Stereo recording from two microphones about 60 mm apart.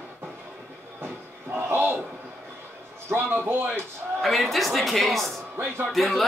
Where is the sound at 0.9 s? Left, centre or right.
Right.